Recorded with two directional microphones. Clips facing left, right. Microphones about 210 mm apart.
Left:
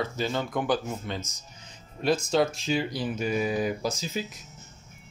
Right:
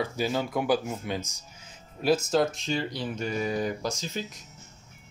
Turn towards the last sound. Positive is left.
turn(degrees=5)  # may be behind; listen again after turning